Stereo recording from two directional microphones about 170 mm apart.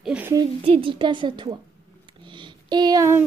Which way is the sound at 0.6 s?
35° right (ahead or behind).